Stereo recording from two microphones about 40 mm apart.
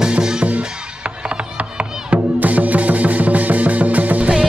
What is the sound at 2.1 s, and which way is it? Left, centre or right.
Music, right.